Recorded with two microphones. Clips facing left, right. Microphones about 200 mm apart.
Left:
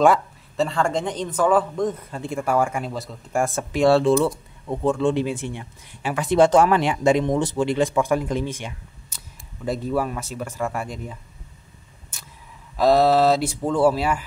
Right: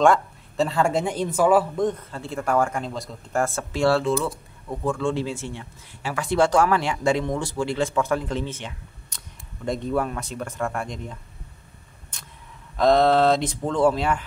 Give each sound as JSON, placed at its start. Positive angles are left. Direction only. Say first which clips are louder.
{"t": 0.0, "sound": "speech", "louder": "left 1 dB", "side_deg": 0}
{"t": 2.0, "sound": "speech", "louder": "left 3 dB", "side_deg": 15}
{"t": 3.4, "sound": "speech", "louder": "left 4 dB", "side_deg": 20}
{"t": 12.7, "sound": "speech", "louder": "left 1 dB", "side_deg": 5}